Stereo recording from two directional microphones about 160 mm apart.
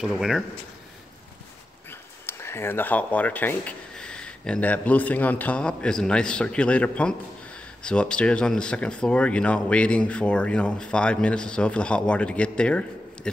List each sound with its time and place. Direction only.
0.0 s speech: 5° right (ahead or behind)
1.9 s speech: 15° left (ahead or behind)